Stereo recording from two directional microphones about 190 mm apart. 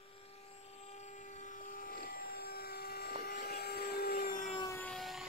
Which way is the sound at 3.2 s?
50° left (ahead or behind).